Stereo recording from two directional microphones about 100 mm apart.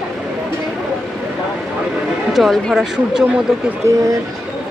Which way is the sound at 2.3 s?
Centre (ahead or behind).